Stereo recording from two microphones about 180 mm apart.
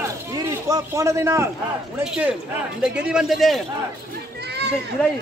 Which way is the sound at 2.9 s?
5° right (ahead or behind).